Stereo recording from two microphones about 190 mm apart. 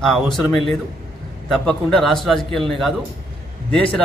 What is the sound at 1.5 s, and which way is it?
Speech, 5° left (ahead or behind).